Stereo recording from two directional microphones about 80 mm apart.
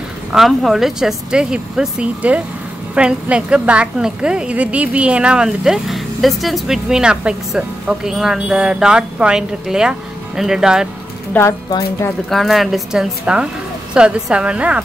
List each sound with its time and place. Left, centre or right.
0.3 s a woman's voice: centre
11.4 s a woman's voice: left
12.3 s a woman's voice: centre